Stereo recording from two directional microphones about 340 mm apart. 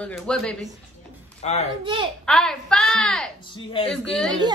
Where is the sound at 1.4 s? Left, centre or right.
Centre.